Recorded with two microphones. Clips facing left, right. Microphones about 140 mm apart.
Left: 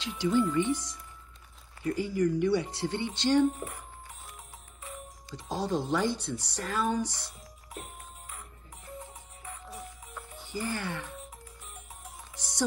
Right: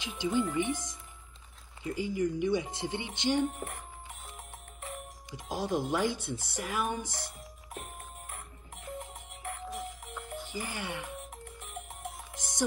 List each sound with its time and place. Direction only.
0.0 s speech: 15° right (ahead or behind)
5.3 s speech: 15° right (ahead or behind)
9.3 s music: 80° right
10.4 s speech: 15° right (ahead or behind)
11.6 s music: 70° right (ahead or behind)